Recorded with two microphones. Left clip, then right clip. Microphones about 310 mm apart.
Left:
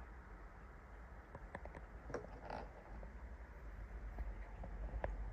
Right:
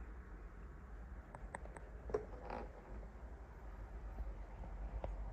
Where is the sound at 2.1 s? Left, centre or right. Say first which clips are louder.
Right 4 dB; left.